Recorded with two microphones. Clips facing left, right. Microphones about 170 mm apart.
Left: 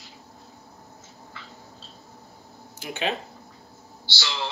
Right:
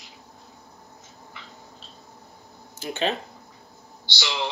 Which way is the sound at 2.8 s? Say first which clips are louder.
Right 3 dB; 15° left (ahead or behind).